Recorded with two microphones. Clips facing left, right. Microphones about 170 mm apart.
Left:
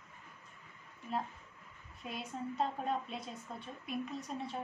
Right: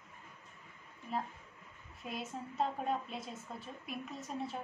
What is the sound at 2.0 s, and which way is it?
A woman's voice, centre (ahead or behind).